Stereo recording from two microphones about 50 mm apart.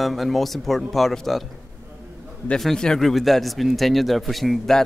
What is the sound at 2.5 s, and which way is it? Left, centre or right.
Speech, centre.